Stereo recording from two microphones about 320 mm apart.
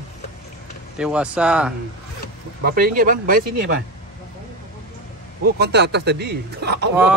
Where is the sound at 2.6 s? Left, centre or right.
Right.